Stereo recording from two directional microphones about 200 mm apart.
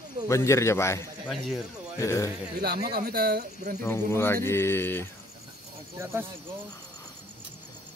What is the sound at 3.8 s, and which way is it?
Speech, 10° left (ahead or behind).